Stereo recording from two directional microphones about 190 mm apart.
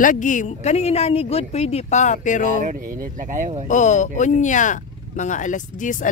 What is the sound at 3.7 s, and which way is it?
Speech, 40° left (ahead or behind).